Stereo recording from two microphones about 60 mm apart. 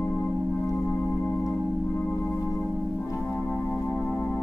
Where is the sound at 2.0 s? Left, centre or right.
Centre.